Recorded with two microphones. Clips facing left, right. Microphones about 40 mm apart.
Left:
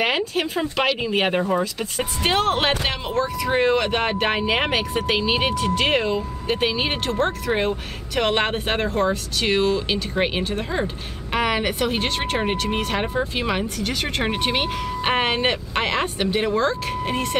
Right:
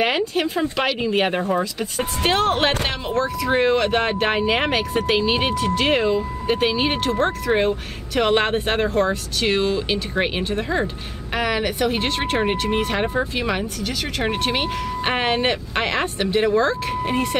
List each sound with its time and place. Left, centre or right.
0.0 s speech: centre